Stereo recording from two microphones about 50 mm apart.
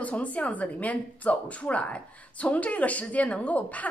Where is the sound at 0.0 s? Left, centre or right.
Left.